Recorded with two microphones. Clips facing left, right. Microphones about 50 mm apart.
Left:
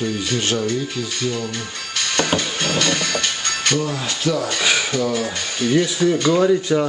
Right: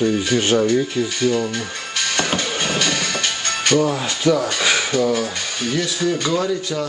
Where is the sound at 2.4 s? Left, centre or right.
Centre.